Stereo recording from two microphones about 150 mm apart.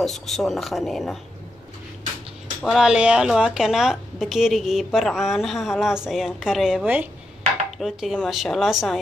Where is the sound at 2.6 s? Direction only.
5° right (ahead or behind).